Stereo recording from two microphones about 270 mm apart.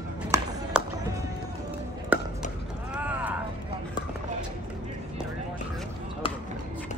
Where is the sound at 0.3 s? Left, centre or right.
Centre.